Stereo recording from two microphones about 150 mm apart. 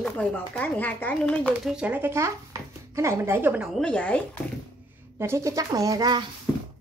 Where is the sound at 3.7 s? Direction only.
5° left (ahead or behind).